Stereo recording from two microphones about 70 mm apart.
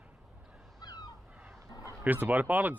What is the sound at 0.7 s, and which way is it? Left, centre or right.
Crow, left.